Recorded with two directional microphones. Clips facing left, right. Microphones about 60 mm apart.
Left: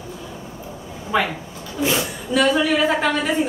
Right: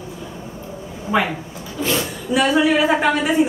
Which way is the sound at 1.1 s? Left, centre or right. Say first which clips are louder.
Right 1 dB; centre.